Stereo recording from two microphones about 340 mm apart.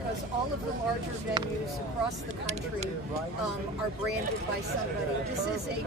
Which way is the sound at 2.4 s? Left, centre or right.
Centre.